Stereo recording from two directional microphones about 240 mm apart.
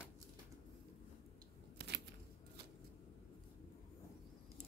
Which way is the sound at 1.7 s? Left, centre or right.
Right.